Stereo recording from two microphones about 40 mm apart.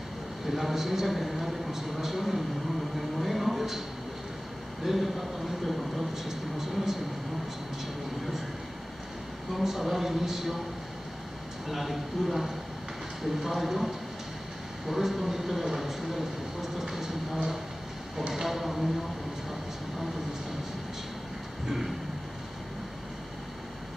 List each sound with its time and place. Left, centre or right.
0.5 s speech: centre
4.8 s speech: centre
9.6 s speech: centre
11.7 s speech: centre
21.6 s vehicle: centre